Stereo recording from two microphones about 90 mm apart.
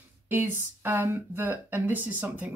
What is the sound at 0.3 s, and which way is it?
Speech, 25° right (ahead or behind).